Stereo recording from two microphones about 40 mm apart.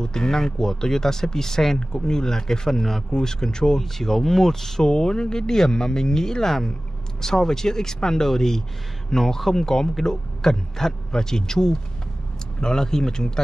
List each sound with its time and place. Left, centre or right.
0.0 s speech: centre